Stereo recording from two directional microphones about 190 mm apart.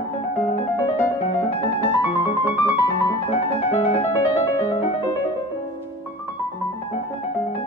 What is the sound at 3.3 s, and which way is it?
Music, 30° left (ahead or behind).